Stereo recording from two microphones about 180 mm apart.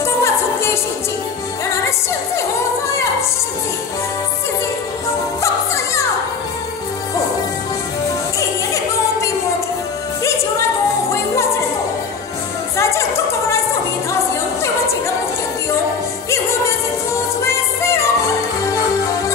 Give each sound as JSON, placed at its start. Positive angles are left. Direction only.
{"t": 0.0, "sound": "music", "side_deg": 15}
{"t": 12.7, "sound": "music", "side_deg": 15}
{"t": 17.4, "sound": "music", "side_deg": 15}